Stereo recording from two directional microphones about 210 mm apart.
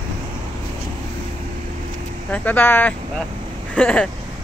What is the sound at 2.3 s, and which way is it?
Speech, 10° left (ahead or behind).